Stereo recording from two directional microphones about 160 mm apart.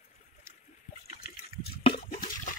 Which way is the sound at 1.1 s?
75° left (ahead or behind).